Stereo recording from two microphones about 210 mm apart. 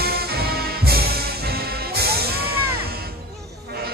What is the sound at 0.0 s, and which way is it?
Music, 45° right (ahead or behind).